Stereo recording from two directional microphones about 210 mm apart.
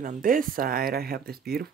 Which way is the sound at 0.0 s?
40° right (ahead or behind).